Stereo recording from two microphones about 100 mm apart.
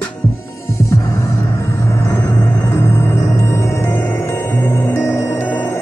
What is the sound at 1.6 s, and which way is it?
Music, 25° left (ahead or behind).